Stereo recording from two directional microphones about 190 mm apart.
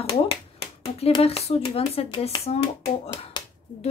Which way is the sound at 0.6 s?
30° left (ahead or behind).